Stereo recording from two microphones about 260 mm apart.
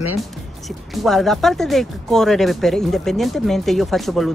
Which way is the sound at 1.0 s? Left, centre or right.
Centre.